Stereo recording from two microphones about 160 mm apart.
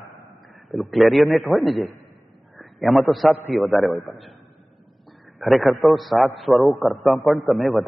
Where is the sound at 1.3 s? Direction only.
15° right (ahead or behind).